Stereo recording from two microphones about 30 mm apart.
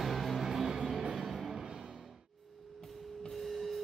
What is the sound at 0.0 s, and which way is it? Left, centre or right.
Music, centre.